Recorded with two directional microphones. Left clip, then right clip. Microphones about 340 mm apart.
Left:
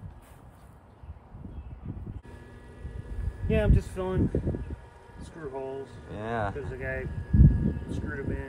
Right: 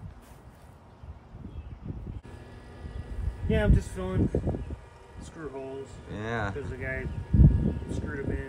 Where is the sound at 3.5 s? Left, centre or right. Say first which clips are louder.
Even; centre.